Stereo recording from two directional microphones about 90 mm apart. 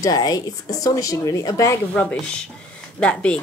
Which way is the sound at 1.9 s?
15° left (ahead or behind).